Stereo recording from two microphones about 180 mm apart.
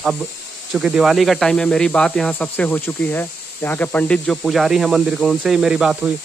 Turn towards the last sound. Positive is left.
turn(degrees=-5)  # may be behind; listen again after turning